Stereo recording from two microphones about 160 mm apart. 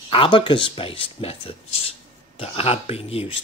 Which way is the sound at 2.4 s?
35° left (ahead or behind).